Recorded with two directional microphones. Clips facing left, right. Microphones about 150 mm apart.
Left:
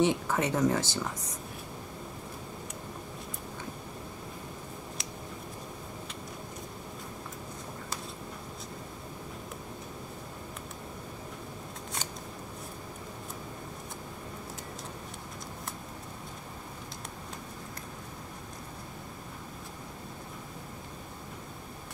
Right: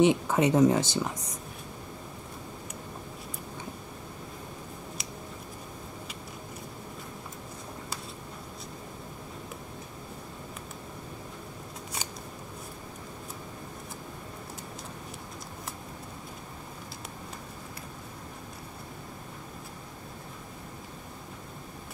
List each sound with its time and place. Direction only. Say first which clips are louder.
0.0 s speech: right 4 dB; 20° right (ahead or behind)
5.0 s scissors: even; centre (ahead or behind)